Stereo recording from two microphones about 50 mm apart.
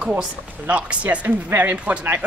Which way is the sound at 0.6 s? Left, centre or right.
Right.